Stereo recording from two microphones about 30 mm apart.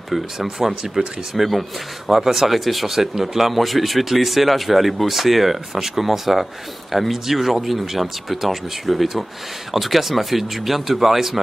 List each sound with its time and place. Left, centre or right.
0.6 s speech: centre
1.3 s speech: centre